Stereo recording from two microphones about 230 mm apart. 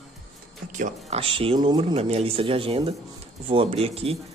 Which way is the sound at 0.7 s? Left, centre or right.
Right.